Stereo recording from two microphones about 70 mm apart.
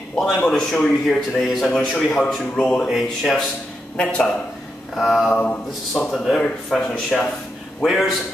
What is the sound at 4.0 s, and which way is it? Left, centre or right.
Speech, centre.